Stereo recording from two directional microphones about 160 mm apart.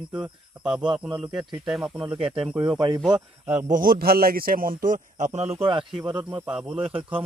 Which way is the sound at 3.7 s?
60° right (ahead or behind).